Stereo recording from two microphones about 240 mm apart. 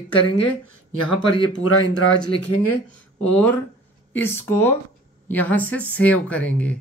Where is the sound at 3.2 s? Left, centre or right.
Centre.